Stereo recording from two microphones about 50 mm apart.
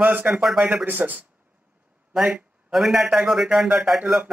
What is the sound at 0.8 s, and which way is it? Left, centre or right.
Speech, right.